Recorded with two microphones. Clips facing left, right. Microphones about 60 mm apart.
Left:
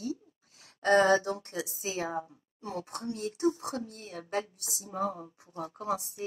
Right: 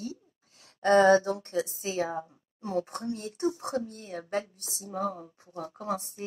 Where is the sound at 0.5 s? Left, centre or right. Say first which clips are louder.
Right 3 dB; left.